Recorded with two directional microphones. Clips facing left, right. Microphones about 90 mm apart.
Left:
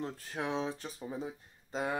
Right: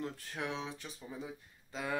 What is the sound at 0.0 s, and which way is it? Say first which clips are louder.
Speech: left 3 dB; 35° left (ahead or behind).